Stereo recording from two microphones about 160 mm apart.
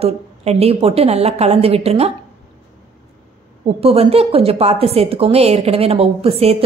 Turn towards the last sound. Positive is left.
turn(degrees=-40)  # may be behind; listen again after turning